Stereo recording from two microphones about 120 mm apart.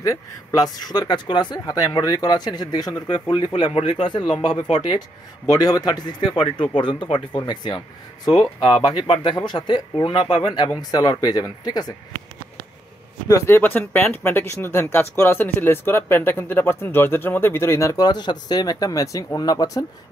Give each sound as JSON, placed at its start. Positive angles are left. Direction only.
{"t": 0.0, "sound": "speech", "side_deg": 30}
{"t": 13.3, "sound": "speech", "side_deg": 20}